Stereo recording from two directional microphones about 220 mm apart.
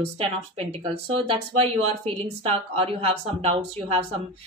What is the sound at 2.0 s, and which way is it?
A woman's voice, 25° right (ahead or behind).